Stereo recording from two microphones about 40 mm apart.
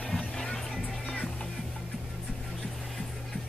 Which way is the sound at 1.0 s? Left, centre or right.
Left.